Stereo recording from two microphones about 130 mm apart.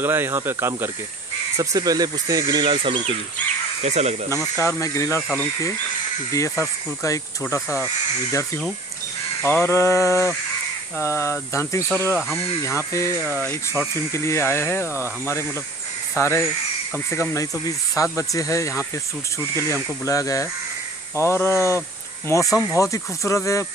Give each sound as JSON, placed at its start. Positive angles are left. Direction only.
{"t": 0.0, "sound": "speech", "side_deg": -15}
{"t": 3.8, "sound": "speech", "side_deg": -60}
{"t": 4.6, "sound": "speech", "side_deg": 25}
{"t": 6.3, "sound": "speech", "side_deg": 20}
{"t": 9.4, "sound": "speech", "side_deg": 20}
{"t": 16.2, "sound": "speech", "side_deg": 20}